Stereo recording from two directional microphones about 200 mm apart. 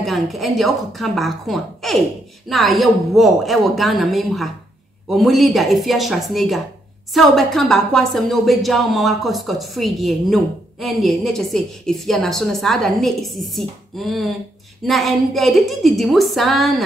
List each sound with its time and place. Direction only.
0.0 s a woman's voice: centre (ahead or behind)